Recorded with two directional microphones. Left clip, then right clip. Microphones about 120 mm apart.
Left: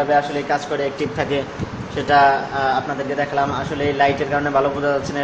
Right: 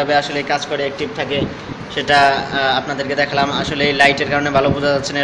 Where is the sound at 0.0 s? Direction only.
5° right (ahead or behind).